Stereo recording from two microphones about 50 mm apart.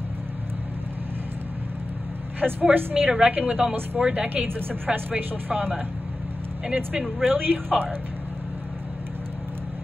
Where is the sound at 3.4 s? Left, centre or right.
Centre.